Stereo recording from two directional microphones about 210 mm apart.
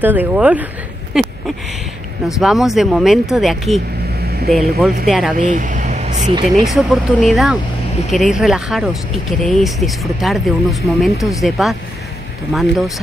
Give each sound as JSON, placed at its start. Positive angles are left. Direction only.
{"t": 0.0, "sound": "speech", "side_deg": -10}
{"t": 2.4, "sound": "speech", "side_deg": 0}
{"t": 5.4, "sound": "vehicle", "side_deg": -40}
{"t": 6.6, "sound": "speech", "side_deg": 0}